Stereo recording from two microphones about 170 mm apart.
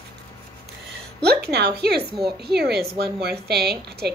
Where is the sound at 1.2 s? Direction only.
70° right (ahead or behind).